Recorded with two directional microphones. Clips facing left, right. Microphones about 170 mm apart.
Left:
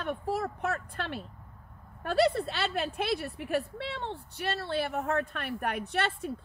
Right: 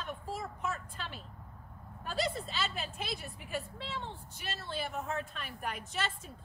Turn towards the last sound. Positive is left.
turn(degrees=65)  # may be behind; listen again after turning